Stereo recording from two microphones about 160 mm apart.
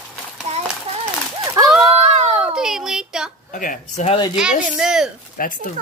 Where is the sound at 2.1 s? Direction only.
45° right (ahead or behind).